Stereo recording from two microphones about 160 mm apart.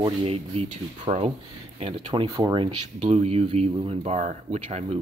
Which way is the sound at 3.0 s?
40° right (ahead or behind).